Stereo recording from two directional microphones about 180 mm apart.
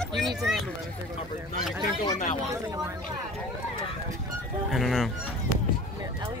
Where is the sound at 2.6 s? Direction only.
20° right (ahead or behind).